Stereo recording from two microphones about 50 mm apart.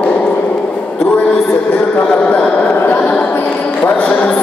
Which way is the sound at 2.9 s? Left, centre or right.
Left.